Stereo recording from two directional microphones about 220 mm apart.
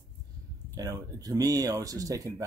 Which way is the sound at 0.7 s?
15° right (ahead or behind).